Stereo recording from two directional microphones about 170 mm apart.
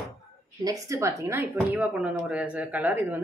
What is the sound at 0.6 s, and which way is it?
Speech, 20° right (ahead or behind).